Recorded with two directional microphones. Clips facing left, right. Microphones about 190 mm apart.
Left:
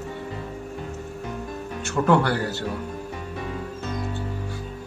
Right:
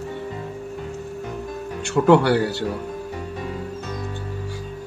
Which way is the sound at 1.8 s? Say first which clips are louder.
Right 5 dB; 15° right (ahead or behind).